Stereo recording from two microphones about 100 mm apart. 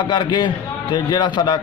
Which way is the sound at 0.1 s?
45° left (ahead or behind).